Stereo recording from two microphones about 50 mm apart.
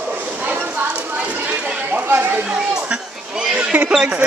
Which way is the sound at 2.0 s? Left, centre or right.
Right.